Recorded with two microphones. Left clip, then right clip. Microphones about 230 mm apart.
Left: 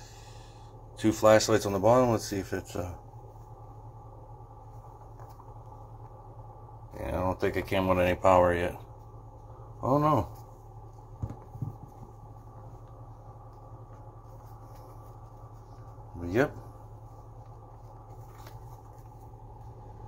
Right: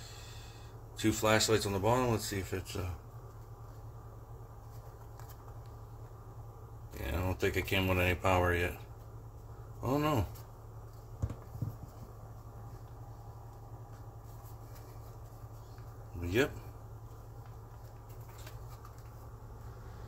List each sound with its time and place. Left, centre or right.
0.9 s speech: centre
6.9 s speech: centre
9.8 s speech: centre
16.2 s a sound: centre